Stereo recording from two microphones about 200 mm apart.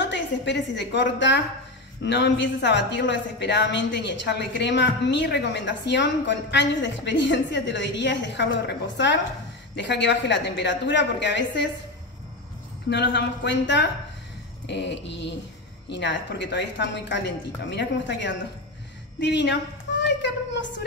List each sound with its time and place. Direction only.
0.0 s a woman's voice: 60° left (ahead or behind)
12.9 s speech: 60° left (ahead or behind)
19.1 s a sound: 60° left (ahead or behind)